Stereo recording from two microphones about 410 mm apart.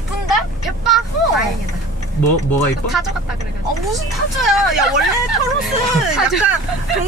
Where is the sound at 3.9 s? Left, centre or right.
Centre.